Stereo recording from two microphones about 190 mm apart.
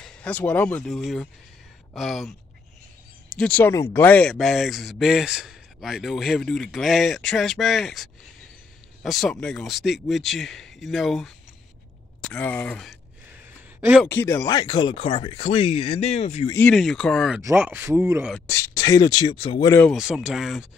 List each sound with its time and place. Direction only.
0.0 s speech: 5° left (ahead or behind)
3.3 s speech: 5° left (ahead or behind)
13.7 s speech: 10° right (ahead or behind)
14.0 s speech: 15° left (ahead or behind); by 16.4 s 35° left (ahead or behind)
16.5 s speech: 5° left (ahead or behind)
17.4 s speech: 10° right (ahead or behind)
18.5 s speech: 15° left (ahead or behind)
19.7 s speech: 10° left (ahead or behind)
20.0 s speech: 5° right (ahead or behind)